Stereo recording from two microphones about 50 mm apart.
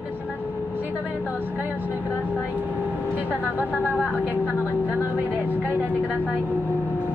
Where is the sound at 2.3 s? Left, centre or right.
Left.